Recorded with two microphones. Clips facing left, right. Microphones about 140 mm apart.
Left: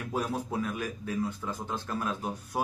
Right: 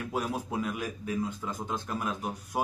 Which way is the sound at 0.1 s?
15° right (ahead or behind).